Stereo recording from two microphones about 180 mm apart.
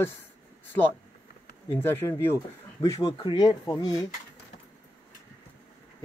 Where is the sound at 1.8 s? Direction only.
15° left (ahead or behind).